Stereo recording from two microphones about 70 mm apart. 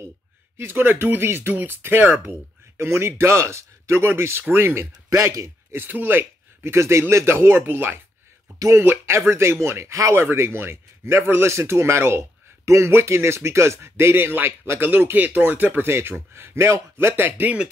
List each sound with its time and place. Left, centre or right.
0.6 s speech: right
5.8 s speech: right
8.5 s speech: right
8.8 s speech: right